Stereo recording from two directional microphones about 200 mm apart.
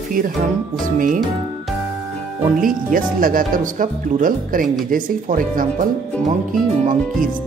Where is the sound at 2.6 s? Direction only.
45° right (ahead or behind).